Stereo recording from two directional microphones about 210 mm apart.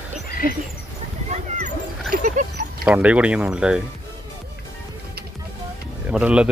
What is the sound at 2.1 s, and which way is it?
Dog, 40° right (ahead or behind).